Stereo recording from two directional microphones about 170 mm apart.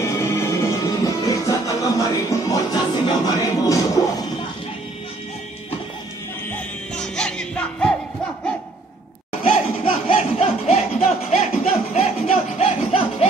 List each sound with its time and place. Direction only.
0.0 s music: 15° left (ahead or behind)
6.5 s music: 5° left (ahead or behind)
10.0 s music: 35° left (ahead or behind)